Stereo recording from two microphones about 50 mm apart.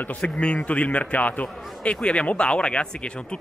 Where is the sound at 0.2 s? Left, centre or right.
Left.